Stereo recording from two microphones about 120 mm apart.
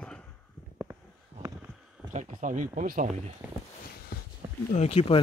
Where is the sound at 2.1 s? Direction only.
90° right.